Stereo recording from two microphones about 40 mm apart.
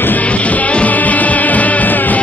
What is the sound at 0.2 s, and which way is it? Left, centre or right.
Music, left.